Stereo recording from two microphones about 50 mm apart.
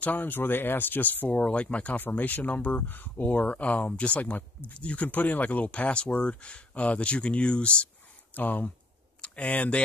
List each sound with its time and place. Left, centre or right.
0.0 s speech: left
2.0 s speech: left
8.4 s speech: left